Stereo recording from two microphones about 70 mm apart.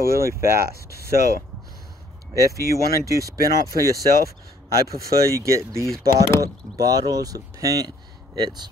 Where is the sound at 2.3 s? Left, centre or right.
Right.